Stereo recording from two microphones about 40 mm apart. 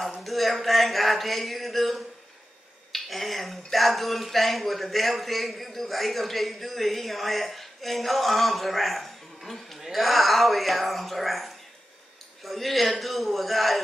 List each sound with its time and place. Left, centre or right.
0.2 s speech: centre